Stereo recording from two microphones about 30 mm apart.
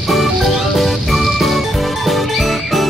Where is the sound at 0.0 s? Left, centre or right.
Centre.